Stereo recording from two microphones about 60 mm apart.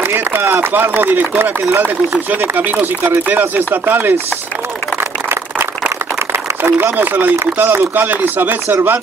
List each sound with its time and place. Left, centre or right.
0.0 s chopping: right
5.3 s a sound: right
6.6 s chopping: right